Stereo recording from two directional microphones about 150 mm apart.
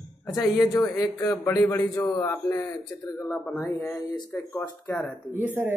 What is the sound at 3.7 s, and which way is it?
Speech, 15° left (ahead or behind).